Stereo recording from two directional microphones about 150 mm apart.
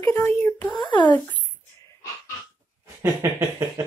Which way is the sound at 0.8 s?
30° left (ahead or behind).